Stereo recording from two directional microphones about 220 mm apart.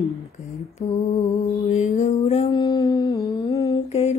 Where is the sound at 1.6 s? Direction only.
35° left (ahead or behind).